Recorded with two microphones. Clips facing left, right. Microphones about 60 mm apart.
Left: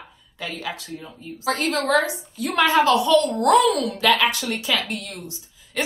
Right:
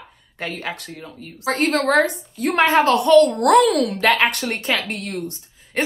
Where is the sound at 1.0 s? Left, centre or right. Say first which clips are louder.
Even; right.